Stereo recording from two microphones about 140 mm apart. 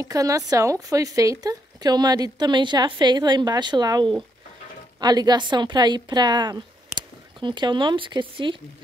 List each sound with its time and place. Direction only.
0.0 s a woman's voice: 25° right (ahead or behind)